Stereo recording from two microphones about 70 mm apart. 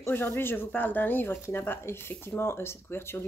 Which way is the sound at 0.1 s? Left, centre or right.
Left.